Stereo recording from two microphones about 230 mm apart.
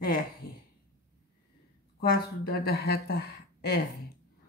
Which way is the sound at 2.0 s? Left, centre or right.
Left.